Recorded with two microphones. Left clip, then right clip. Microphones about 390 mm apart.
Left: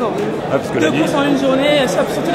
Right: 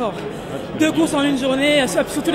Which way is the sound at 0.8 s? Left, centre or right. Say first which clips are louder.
Right 1 dB; right.